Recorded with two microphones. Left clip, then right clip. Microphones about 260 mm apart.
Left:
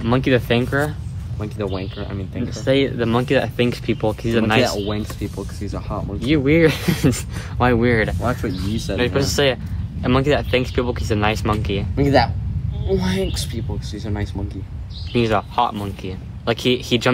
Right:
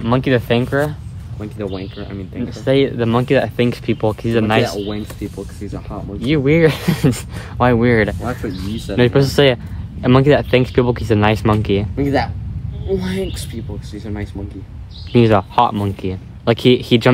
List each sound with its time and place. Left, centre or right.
0.0 s speech: right
1.4 s speech: left
2.5 s speech: right
4.8 s speech: left
6.2 s speech: right
8.3 s speech: left
8.9 s speech: right
11.9 s speech: centre
15.1 s speech: right